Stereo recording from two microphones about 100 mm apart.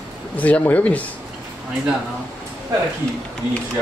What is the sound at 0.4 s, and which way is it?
Speech, 15° left (ahead or behind).